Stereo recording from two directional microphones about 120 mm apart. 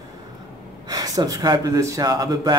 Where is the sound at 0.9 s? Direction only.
30° right (ahead or behind).